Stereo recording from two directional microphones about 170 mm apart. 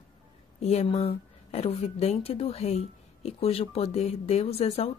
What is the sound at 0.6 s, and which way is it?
Speech, 35° left (ahead or behind).